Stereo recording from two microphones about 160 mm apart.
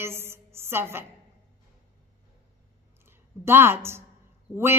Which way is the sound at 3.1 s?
15° right (ahead or behind).